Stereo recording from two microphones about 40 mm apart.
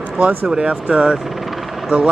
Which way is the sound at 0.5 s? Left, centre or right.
Right.